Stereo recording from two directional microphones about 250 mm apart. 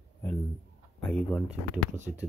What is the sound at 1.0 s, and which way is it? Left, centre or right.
Speech, centre.